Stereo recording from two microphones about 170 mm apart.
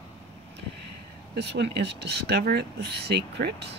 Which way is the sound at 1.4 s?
80° right.